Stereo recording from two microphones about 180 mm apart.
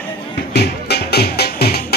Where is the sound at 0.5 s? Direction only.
65° left (ahead or behind).